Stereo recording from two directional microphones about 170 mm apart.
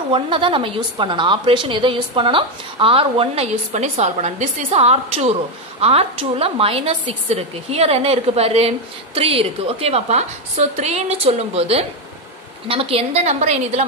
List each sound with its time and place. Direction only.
0.1 s a woman's voice: 30° right (ahead or behind)